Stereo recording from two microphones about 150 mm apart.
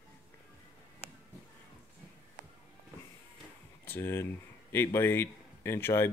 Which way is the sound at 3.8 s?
15° left (ahead or behind).